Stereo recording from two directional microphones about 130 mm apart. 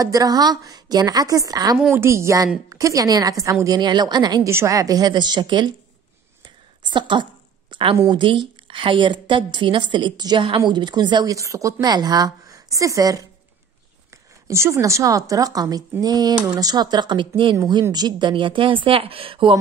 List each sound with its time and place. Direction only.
0.0 s speech: 30° right (ahead or behind)
1.8 s a woman's voice: 15° right (ahead or behind); by 4.4 s 30° right (ahead or behind)
4.5 s a woman's voice: 20° right (ahead or behind)
6.4 s a sound: 35° right (ahead or behind)
7.7 s a woman's voice: 40° right (ahead or behind)